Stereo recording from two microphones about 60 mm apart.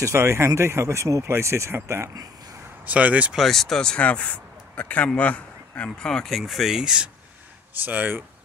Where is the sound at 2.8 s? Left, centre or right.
Right.